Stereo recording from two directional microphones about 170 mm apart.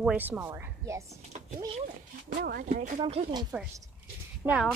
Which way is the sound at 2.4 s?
60° right (ahead or behind).